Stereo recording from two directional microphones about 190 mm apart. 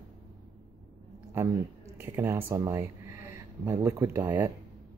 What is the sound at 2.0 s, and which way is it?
Speech, 15° right (ahead or behind).